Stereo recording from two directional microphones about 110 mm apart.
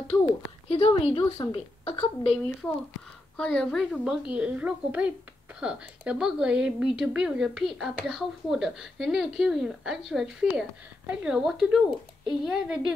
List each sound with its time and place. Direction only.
0.7 s a woman's voice: 65° left (ahead or behind)
3.3 s a woman's voice: 5° left (ahead or behind)
3.9 s a woman's voice: 5° right (ahead or behind)